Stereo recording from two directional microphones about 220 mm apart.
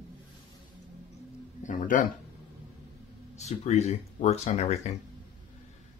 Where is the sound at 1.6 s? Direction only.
35° left (ahead or behind).